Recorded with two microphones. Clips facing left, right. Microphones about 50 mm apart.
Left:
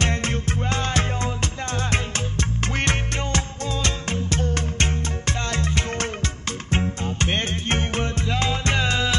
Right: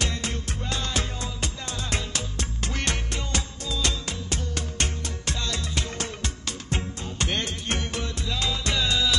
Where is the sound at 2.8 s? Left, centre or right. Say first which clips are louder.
Left 5 dB; left.